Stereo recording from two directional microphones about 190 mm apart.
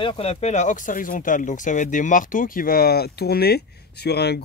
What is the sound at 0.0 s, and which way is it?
Speech, 30° left (ahead or behind).